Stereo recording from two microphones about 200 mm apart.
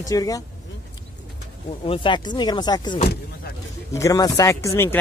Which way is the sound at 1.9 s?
25° left (ahead or behind).